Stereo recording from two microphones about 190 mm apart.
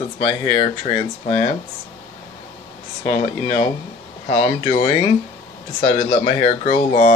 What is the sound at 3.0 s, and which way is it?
Speech, 30° left (ahead or behind).